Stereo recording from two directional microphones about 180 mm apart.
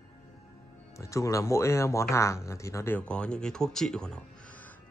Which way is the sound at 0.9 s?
15° left (ahead or behind).